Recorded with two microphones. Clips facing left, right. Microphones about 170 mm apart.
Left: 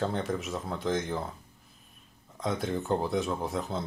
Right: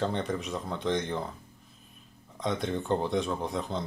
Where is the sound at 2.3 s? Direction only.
Centre (ahead or behind).